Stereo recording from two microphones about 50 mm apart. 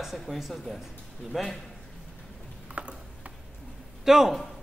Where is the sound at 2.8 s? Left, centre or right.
Right.